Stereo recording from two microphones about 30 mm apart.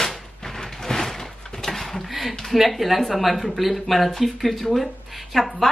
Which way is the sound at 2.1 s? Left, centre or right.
Centre.